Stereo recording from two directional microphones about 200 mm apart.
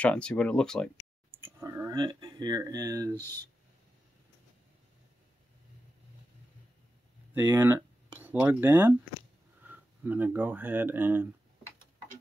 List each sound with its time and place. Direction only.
0.0 s speech: 5° left (ahead or behind)
1.4 s speech: 15° right (ahead or behind)
3.2 s speech: 10° left (ahead or behind)
7.3 s speech: 10° right (ahead or behind)